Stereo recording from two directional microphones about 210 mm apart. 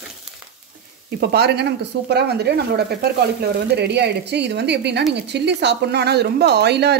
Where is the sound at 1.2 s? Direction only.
50° right (ahead or behind).